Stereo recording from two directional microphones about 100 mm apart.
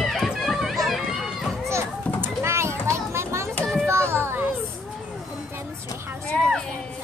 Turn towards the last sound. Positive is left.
turn(degrees=5)  # may be behind; listen again after turning